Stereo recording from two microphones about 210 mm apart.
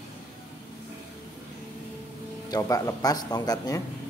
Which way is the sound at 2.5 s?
15° left (ahead or behind).